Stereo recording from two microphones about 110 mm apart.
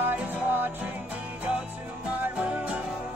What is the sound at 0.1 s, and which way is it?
Music, 15° right (ahead or behind).